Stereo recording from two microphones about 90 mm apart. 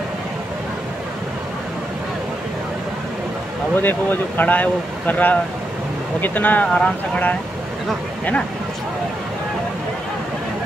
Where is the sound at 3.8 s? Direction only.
20° left (ahead or behind).